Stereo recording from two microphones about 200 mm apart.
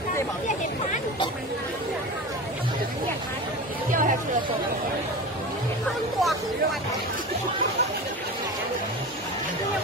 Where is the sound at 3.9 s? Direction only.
40° right (ahead or behind).